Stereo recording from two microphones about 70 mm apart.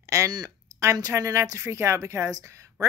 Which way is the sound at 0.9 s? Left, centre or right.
Right.